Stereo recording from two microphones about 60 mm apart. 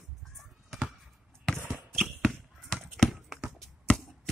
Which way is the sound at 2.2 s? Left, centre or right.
Centre.